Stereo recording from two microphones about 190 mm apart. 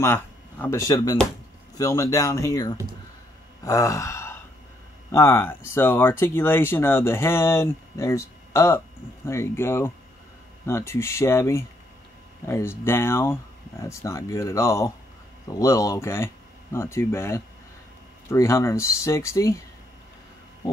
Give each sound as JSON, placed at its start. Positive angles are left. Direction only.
{"t": 0.0, "sound": "speech", "side_deg": 10}
{"t": 3.6, "sound": "sigh", "side_deg": 15}
{"t": 5.1, "sound": "speech", "side_deg": 10}